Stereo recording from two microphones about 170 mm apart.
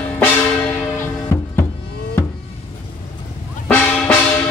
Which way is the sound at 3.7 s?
10° left (ahead or behind).